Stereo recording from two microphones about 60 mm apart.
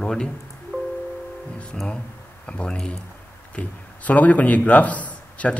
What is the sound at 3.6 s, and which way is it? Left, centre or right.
A man's voice, left.